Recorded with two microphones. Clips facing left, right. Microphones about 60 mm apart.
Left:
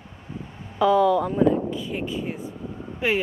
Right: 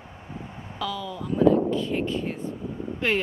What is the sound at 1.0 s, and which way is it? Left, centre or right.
Speech, left.